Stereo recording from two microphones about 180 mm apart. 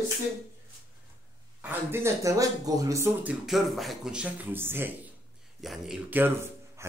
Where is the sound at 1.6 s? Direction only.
10° right (ahead or behind).